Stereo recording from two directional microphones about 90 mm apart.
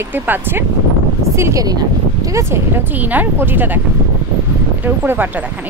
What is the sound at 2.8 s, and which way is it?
Speech, 20° right (ahead or behind).